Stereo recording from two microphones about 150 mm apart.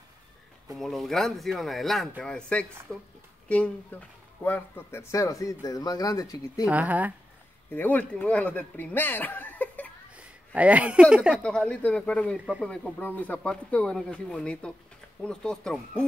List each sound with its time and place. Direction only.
0.7 s speech: centre (ahead or behind); by 6.6 s 25° left (ahead or behind)
6.6 s speech: 10° right (ahead or behind)
7.7 s speech: 10° left (ahead or behind)
10.1 s speech: 10° right (ahead or behind)
11.3 s speech: 5° left (ahead or behind)